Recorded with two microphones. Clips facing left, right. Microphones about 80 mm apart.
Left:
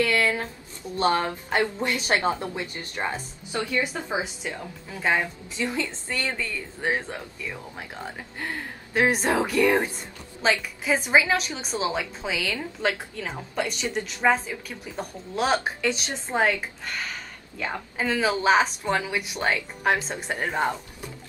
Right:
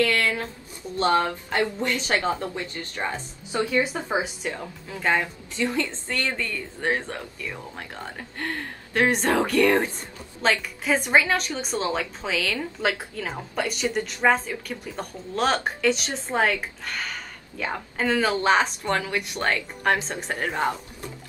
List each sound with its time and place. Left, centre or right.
0.0 s a sound: centre
1.6 s a woman's voice: centre
3.5 s speech: right
5.0 s a woman's voice: centre
5.6 s a woman's voice: centre